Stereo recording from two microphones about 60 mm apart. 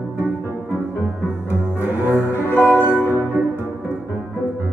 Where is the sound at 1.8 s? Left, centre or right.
Right.